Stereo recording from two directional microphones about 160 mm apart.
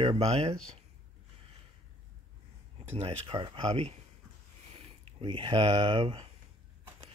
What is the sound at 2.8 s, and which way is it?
Speech, 40° right (ahead or behind).